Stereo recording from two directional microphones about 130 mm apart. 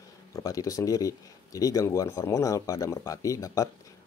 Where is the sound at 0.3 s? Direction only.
25° left (ahead or behind).